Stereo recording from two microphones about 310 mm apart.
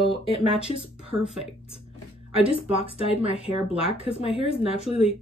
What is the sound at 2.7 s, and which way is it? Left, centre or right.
Speech, centre.